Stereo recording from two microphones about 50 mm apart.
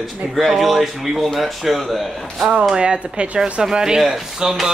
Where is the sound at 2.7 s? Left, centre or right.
Centre.